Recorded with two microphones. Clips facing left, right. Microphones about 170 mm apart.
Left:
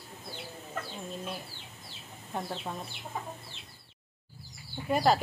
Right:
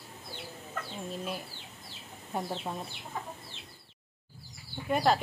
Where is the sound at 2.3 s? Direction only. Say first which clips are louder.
Right 1 dB; 10° right (ahead or behind).